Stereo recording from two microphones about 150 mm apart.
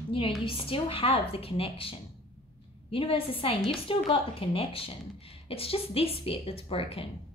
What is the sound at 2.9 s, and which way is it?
A woman's voice, 35° left (ahead or behind).